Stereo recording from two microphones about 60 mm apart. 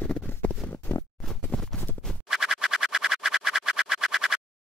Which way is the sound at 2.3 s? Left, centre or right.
Centre.